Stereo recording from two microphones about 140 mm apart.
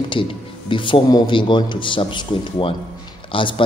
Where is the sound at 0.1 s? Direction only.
35° left (ahead or behind).